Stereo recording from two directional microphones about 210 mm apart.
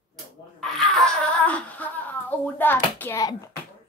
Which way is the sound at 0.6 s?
Centre (ahead or behind).